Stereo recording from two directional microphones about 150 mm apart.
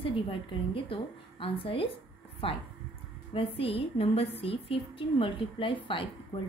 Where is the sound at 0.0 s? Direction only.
35° left (ahead or behind).